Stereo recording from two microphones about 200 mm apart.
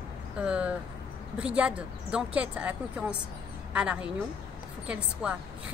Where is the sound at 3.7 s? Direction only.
5° right (ahead or behind).